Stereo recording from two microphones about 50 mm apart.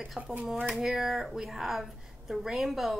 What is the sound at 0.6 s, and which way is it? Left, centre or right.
Speech, centre.